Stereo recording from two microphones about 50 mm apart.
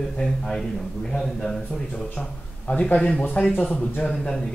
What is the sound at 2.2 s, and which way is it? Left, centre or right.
Speech, left.